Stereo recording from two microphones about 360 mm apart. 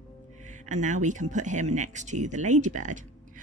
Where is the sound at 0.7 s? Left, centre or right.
Centre.